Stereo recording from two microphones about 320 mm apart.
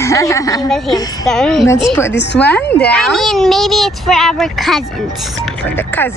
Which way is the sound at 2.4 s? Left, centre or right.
Centre.